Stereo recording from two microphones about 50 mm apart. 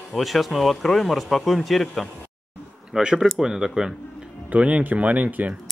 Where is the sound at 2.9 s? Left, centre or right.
Centre.